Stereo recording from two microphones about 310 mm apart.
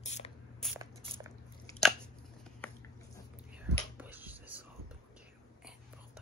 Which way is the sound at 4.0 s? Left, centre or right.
Centre.